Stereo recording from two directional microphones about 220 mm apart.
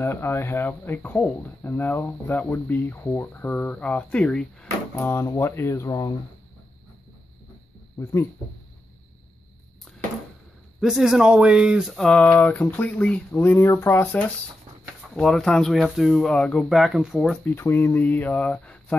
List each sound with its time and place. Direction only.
0.0 s speech: 10° left (ahead or behind)
8.0 s speech: 10° left (ahead or behind)
10.8 s speech: centre (ahead or behind)